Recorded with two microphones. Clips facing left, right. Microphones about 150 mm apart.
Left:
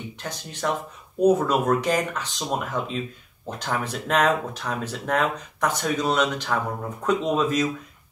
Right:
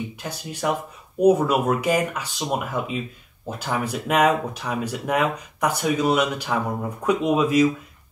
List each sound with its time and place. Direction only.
0.2 s speech: 10° right (ahead or behind)